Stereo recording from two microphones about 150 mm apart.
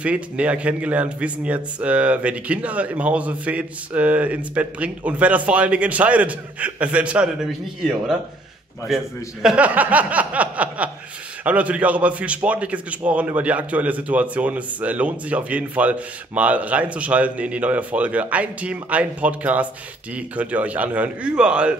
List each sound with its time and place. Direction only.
0.0 s a man's voice: 10° right (ahead or behind)